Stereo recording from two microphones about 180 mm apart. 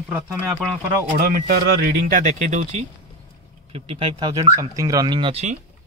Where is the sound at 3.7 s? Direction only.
30° right (ahead or behind).